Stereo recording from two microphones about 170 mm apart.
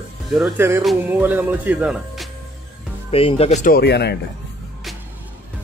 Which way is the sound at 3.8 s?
75° left (ahead or behind).